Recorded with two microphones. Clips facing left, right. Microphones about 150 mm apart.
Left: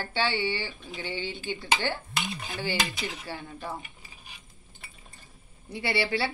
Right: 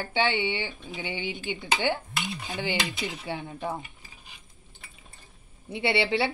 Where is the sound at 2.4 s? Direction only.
20° right (ahead or behind).